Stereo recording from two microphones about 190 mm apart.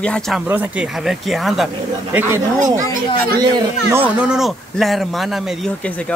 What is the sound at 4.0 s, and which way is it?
Speech, 5° right (ahead or behind).